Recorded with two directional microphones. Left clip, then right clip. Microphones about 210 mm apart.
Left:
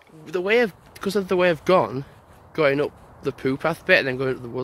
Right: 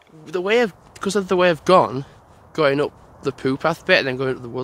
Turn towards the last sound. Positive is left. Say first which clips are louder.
# right 2 dB
turn(degrees=-10)  # may be behind; listen again after turning